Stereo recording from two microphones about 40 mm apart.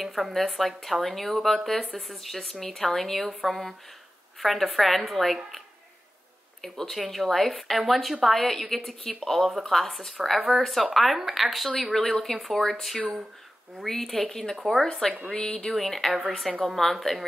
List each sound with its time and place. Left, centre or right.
0.0 s speech: centre
6.6 s speech: centre
13.8 s speech: centre
15.4 s a woman's voice: centre